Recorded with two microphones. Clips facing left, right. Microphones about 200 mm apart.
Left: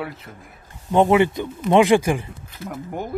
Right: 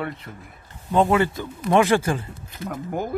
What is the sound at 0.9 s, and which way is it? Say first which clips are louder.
Speech: left 3 dB; 20° left (ahead or behind).